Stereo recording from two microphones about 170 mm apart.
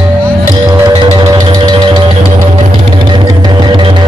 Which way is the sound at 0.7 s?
25° right (ahead or behind).